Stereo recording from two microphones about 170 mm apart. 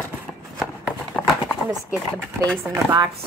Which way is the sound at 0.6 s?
5° left (ahead or behind).